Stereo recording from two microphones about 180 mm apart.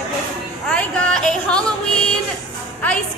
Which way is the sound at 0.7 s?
5° left (ahead or behind).